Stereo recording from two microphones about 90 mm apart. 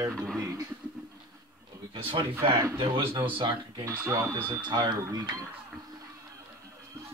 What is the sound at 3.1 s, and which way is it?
Speech, 70° right (ahead or behind).